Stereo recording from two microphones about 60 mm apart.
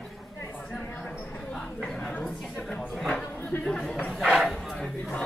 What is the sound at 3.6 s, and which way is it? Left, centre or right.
Chatter, centre.